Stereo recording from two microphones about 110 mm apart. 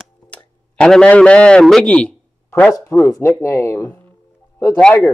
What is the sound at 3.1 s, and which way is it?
Speech, 30° left (ahead or behind).